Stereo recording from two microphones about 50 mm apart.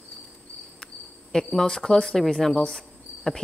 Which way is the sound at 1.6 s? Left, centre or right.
Centre.